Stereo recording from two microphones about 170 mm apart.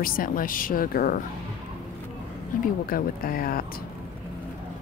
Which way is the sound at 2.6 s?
60° left (ahead or behind).